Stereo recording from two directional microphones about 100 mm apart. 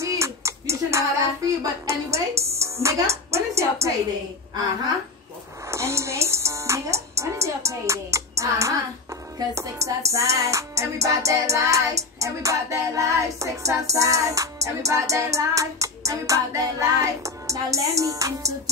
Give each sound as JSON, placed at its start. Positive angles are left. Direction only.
{"t": 0.0, "sound": "a sound", "side_deg": -30}
{"t": 2.6, "sound": "a woman's voice", "side_deg": -30}
{"t": 5.7, "sound": "music", "side_deg": -30}